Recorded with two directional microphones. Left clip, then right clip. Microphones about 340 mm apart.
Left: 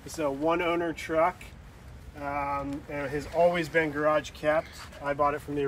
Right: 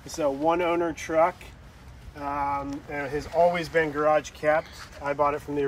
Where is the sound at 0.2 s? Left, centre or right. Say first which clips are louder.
Right 3 dB; centre.